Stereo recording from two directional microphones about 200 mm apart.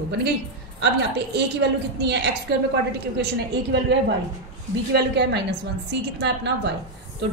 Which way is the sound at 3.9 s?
60° right (ahead or behind).